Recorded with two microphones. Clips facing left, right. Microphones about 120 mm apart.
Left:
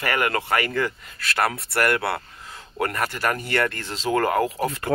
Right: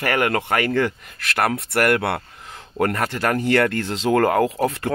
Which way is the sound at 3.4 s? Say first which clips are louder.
Right 6 dB; 75° right (ahead or behind).